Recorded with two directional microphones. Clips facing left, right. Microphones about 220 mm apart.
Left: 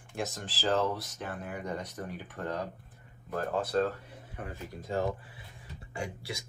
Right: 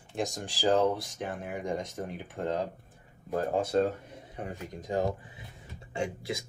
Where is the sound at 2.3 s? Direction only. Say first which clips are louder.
Right 5 dB; 25° right (ahead or behind).